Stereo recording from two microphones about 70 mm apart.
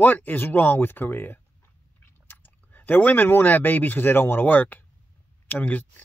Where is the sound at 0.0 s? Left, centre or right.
Left.